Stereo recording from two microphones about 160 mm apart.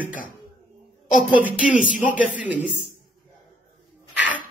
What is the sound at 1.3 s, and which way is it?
Speech, 10° right (ahead or behind).